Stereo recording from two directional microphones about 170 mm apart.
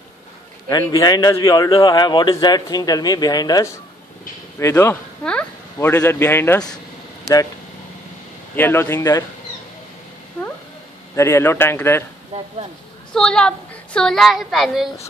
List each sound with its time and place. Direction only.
0.7 s a man's voice: 25° left (ahead or behind)
8.5 s speech: 15° left (ahead or behind)
11.1 s speech: 15° left (ahead or behind)
13.1 s a woman's voice: 5° left (ahead or behind)